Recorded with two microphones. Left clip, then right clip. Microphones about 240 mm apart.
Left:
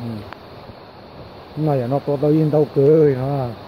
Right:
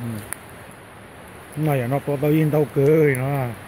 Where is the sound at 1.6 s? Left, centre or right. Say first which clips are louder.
Left 3 dB; centre.